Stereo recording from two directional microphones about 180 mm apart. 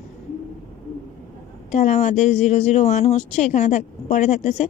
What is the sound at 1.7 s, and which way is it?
Speech, 40° left (ahead or behind).